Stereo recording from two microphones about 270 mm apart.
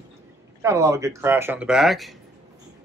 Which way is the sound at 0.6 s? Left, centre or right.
Centre.